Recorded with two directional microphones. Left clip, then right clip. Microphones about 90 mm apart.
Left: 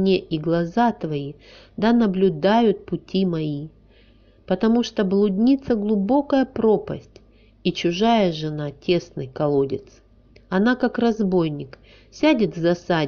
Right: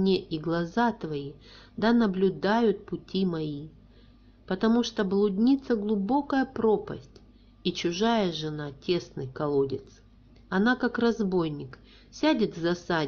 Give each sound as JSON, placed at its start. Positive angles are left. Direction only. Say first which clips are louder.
{"t": 0.0, "sound": "a woman's voice", "louder": "left 6 dB", "side_deg": 30}